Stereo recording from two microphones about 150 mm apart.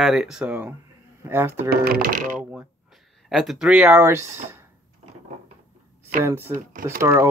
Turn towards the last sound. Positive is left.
turn(degrees=-20)  # may be behind; listen again after turning